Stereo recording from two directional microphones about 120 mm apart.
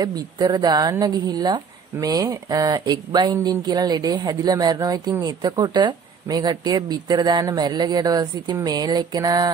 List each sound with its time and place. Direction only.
0.0 s speech: 35° right (ahead or behind)